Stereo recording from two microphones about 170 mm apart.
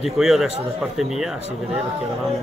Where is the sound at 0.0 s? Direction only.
Centre (ahead or behind).